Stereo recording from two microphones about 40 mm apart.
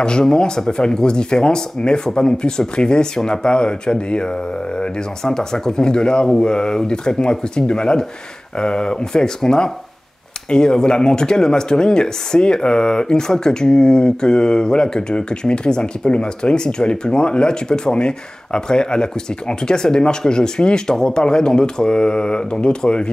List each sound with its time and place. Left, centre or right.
0.0 s speech: centre